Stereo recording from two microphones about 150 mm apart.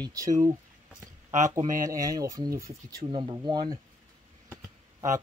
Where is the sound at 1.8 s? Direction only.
25° right (ahead or behind).